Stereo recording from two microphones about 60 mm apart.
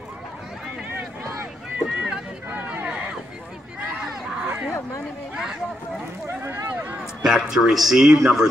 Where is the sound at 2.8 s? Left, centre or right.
Centre.